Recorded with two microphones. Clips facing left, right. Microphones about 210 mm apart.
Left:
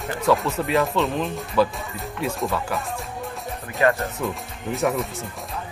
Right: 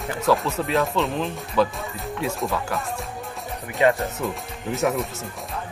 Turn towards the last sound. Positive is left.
turn(degrees=0)  # may be behind; listen again after turning